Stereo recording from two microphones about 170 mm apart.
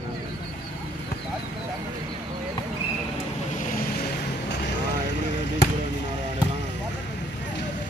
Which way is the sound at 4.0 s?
90° left.